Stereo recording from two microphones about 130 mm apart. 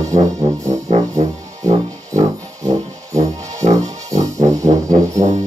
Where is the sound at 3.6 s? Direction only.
30° right (ahead or behind).